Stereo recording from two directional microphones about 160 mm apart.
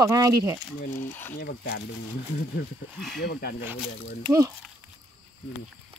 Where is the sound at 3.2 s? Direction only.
70° left (ahead or behind).